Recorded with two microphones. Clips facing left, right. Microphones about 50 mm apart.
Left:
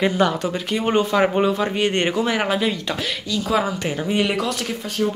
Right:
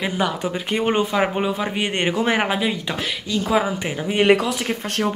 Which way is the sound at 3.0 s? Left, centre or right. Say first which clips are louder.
Right 1 dB; right.